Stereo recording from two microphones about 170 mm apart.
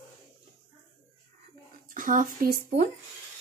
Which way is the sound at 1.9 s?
50° right (ahead or behind).